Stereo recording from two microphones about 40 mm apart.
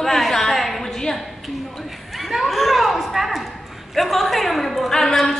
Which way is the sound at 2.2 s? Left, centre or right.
Centre.